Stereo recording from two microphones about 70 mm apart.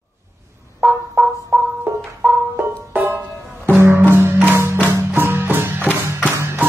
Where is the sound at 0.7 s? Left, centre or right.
Centre.